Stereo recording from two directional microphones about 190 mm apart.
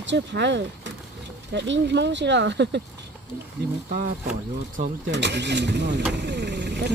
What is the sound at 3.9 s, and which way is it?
Speech, 45° right (ahead or behind).